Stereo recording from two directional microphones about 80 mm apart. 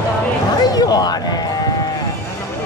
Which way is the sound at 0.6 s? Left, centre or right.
Left.